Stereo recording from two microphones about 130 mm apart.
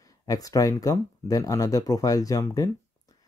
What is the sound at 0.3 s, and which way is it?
Speech, 25° left (ahead or behind).